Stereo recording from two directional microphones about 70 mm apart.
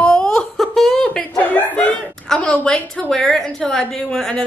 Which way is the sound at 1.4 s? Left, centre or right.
Centre.